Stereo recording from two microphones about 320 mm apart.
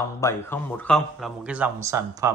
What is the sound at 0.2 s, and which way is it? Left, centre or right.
Speech, centre.